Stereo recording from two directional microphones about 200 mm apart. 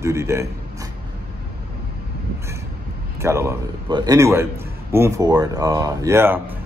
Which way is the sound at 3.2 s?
15° right (ahead or behind).